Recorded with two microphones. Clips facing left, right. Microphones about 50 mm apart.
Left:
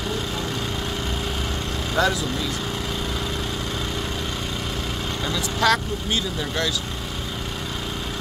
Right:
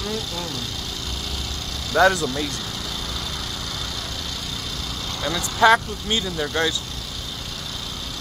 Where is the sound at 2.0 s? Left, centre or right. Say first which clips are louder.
Right 5 dB; right.